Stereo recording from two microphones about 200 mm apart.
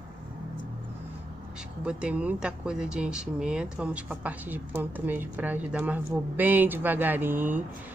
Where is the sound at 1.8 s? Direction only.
5° right (ahead or behind).